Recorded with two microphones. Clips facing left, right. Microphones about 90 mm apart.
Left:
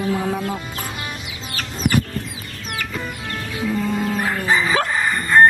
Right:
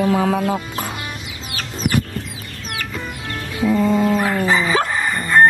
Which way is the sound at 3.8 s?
90° right.